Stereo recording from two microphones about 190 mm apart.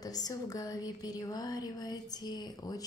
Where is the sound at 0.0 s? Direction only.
20° left (ahead or behind).